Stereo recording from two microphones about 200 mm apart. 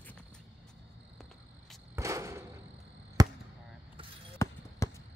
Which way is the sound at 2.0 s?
15° right (ahead or behind).